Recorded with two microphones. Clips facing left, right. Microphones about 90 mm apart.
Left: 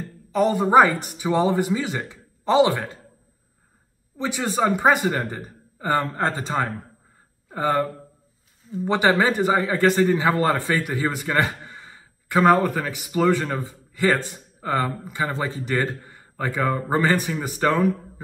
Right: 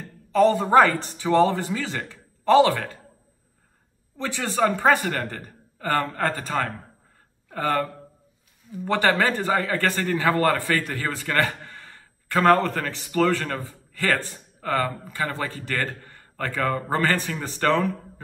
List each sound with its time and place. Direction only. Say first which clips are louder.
0.3 s a man's voice: right 1 dB; 15° left (ahead or behind)
4.2 s a man's voice: left 1 dB; 15° left (ahead or behind)